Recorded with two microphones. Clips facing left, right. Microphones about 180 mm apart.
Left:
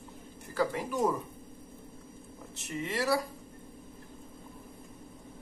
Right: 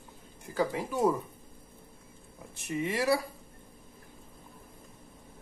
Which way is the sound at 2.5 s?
10° right (ahead or behind).